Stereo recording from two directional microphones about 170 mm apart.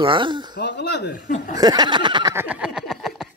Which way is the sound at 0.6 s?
80° left.